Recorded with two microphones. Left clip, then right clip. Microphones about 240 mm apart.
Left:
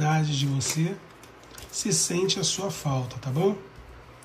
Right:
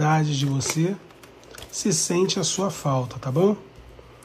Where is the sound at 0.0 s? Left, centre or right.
Centre.